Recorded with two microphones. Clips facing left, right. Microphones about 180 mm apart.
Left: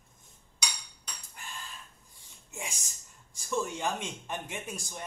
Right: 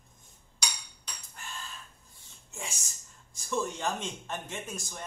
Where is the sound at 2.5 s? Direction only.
15° left (ahead or behind).